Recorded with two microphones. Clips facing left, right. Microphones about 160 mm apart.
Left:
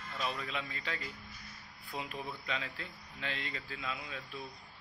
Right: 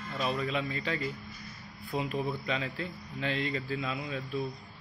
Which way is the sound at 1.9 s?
55° right (ahead or behind).